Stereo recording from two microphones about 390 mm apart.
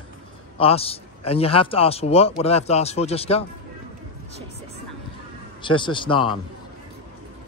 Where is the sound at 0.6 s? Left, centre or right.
Centre.